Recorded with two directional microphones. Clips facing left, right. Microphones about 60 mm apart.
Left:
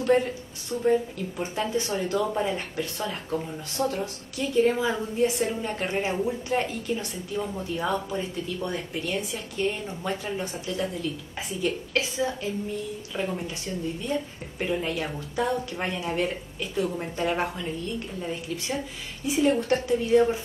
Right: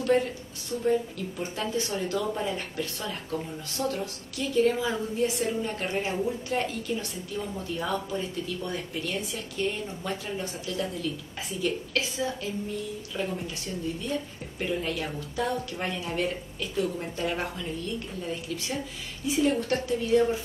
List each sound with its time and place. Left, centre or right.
0.0 s speech: left
19.3 s speech: left